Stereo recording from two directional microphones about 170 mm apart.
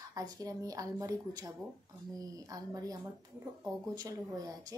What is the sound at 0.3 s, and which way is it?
Speech, 20° right (ahead or behind).